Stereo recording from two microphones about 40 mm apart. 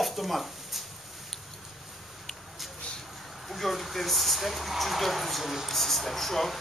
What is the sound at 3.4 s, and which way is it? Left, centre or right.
Speech, centre.